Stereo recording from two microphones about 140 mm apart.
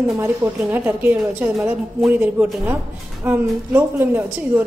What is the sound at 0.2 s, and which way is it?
A woman's voice, 15° right (ahead or behind).